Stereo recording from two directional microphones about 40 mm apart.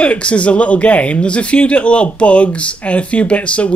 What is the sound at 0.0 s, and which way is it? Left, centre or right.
Speech, left.